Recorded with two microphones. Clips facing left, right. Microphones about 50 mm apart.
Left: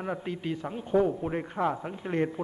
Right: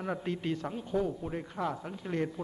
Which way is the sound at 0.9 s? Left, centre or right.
Left.